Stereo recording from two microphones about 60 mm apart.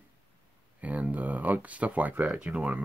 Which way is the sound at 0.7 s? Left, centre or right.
Right.